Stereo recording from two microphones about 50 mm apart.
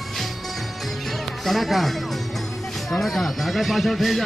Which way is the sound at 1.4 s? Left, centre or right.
Centre.